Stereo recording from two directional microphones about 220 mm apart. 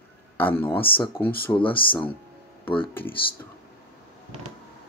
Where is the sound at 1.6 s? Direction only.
25° left (ahead or behind).